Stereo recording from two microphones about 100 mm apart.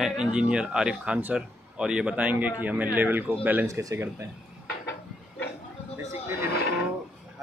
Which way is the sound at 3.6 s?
30° right (ahead or behind).